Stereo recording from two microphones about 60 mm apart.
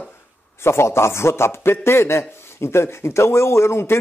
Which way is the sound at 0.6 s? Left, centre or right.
Left.